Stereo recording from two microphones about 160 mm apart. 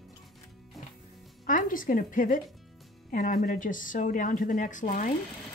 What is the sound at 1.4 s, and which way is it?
A woman's voice, 55° left (ahead or behind).